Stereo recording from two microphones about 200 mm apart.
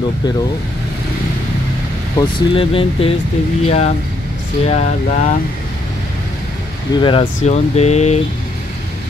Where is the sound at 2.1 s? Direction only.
25° left (ahead or behind).